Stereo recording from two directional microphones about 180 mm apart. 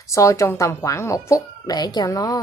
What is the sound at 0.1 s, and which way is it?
Speech, 15° left (ahead or behind).